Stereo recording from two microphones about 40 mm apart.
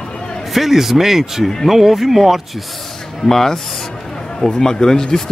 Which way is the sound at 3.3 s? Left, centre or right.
Centre.